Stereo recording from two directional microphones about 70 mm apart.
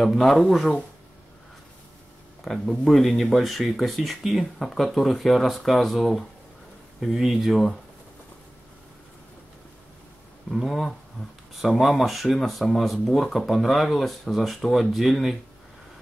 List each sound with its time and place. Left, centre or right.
0.0 s speech: centre
2.4 s speech: centre
10.5 s speech: centre